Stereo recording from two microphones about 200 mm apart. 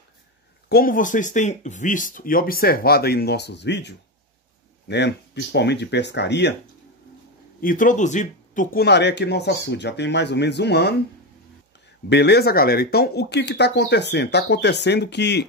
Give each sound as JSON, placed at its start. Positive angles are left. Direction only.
{"t": 0.7, "sound": "speech", "side_deg": 45}
{"t": 7.6, "sound": "speech", "side_deg": 40}
{"t": 8.8, "sound": "speech", "side_deg": 60}
{"t": 12.1, "sound": "speech", "side_deg": 55}